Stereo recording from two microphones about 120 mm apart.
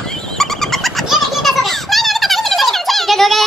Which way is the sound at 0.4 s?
5° left (ahead or behind).